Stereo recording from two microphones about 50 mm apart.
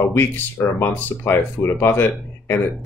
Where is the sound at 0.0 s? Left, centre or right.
Left.